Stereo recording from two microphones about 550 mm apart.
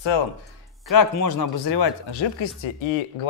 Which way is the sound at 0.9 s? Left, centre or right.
Left.